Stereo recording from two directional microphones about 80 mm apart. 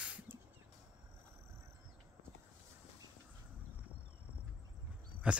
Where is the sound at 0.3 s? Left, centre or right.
Right.